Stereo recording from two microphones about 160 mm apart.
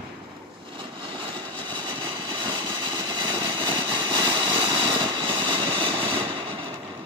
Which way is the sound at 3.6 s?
30° right (ahead or behind).